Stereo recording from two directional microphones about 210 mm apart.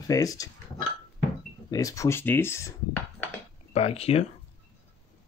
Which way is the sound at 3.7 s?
30° left (ahead or behind).